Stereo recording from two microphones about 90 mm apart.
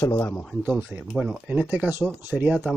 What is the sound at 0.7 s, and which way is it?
Speech, 20° right (ahead or behind).